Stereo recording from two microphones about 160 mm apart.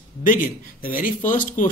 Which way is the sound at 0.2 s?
55° left (ahead or behind).